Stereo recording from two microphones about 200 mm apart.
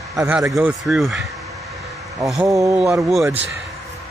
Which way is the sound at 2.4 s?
15° right (ahead or behind).